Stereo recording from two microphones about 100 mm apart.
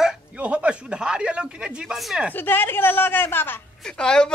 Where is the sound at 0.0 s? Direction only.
10° right (ahead or behind).